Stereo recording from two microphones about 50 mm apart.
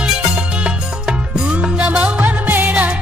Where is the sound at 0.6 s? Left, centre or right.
Centre; by 2.9 s right.